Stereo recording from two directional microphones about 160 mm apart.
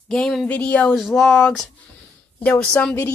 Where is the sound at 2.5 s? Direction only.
10° left (ahead or behind).